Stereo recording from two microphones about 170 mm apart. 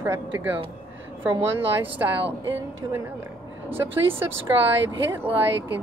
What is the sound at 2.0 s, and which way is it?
Speech, 20° right (ahead or behind).